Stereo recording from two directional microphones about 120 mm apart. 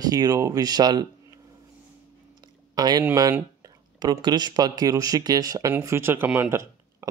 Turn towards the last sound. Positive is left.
turn(degrees=-20)  # may be behind; listen again after turning